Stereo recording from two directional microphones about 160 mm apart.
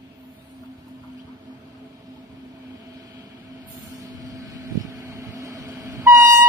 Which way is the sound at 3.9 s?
20° right (ahead or behind).